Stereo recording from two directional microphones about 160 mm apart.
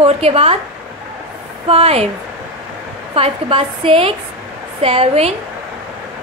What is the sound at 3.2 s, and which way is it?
Speech, 35° right (ahead or behind).